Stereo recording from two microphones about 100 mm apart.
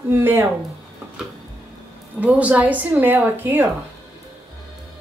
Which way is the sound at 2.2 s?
15° right (ahead or behind).